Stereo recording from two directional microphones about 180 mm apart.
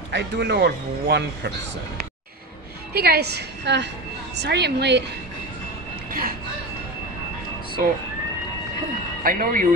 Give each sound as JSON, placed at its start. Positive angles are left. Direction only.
{"t": 0.1, "sound": "a man's voice", "side_deg": -70}
{"t": 2.9, "sound": "a woman's voice", "side_deg": -60}
{"t": 7.8, "sound": "speech", "side_deg": -50}
{"t": 9.2, "sound": "speech", "side_deg": -50}